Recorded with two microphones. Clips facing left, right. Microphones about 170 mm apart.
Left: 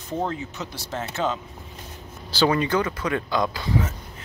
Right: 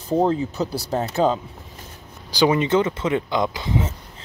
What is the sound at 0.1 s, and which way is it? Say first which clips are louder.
Speech: right 8 dB; 35° right (ahead or behind).